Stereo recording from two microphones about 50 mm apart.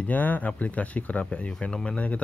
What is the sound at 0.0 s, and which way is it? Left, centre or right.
Speech, left.